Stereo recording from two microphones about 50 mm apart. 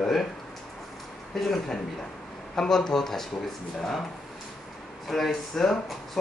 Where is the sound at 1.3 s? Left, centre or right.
Centre.